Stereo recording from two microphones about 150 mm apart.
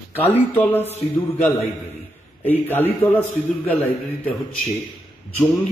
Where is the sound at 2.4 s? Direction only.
10° left (ahead or behind).